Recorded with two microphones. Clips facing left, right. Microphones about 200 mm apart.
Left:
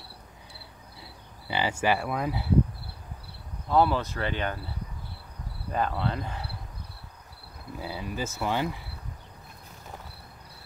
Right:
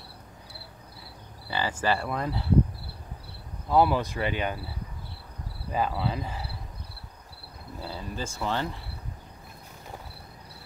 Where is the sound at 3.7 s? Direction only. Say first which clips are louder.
Right 1 dB; 10° right (ahead or behind).